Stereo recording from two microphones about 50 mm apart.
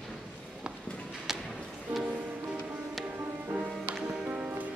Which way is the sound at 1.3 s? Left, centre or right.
Centre.